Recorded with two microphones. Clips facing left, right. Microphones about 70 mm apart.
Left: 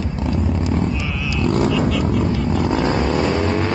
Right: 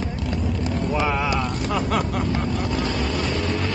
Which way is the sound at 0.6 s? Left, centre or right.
Right.